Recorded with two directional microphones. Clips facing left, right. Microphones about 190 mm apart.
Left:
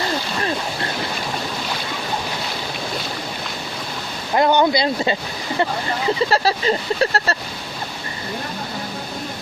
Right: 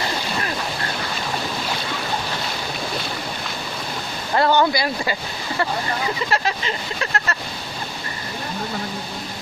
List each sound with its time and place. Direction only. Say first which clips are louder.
4.4 s speech: left 2 dB; 20° left (ahead or behind)
6.3 s speech: left 5 dB; 35° left (ahead or behind)